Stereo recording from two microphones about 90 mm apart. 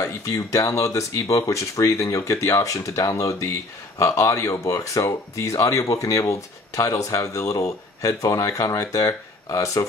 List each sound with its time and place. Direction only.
0.0 s speech: 40° left (ahead or behind)